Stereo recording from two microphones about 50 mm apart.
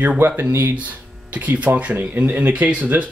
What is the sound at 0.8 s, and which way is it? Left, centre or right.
Speech, right.